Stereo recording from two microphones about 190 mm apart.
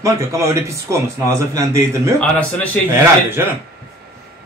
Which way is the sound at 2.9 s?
15° right (ahead or behind).